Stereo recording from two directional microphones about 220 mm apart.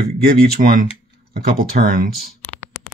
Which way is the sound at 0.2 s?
45° right (ahead or behind).